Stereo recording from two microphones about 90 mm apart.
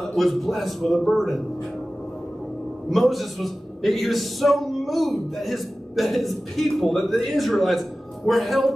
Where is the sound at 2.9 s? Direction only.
Centre (ahead or behind).